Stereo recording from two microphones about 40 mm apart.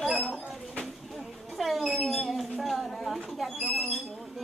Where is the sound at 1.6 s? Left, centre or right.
Centre.